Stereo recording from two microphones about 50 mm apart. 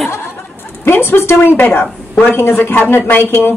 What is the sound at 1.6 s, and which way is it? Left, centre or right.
A woman's voice, left.